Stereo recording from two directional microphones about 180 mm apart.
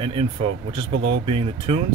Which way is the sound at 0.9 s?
90° right.